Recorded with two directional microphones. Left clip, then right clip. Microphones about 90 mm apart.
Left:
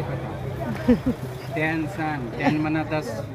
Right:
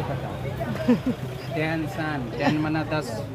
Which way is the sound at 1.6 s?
35° right (ahead or behind).